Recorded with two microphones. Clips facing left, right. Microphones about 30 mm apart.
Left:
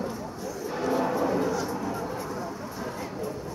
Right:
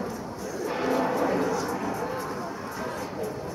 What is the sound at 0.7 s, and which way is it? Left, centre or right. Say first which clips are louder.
Vehicle: right 1 dB; right.